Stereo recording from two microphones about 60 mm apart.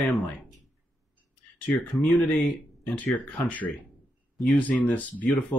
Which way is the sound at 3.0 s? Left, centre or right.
Left.